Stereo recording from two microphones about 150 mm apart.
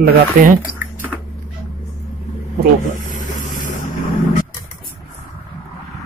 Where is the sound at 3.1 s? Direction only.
60° left (ahead or behind).